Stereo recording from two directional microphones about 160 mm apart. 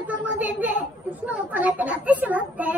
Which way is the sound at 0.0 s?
10° right (ahead or behind).